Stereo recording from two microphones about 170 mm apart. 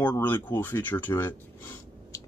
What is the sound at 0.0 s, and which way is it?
Speech, 10° left (ahead or behind).